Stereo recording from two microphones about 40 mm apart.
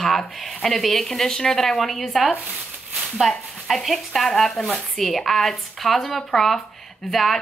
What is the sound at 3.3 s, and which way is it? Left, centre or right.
Speech, centre.